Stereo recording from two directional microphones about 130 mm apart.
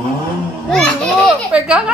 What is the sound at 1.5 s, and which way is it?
Speech, 10° right (ahead or behind).